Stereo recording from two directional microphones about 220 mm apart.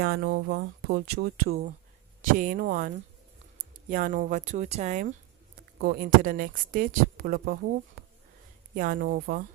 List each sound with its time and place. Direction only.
0.1 s speech: 55° right (ahead or behind)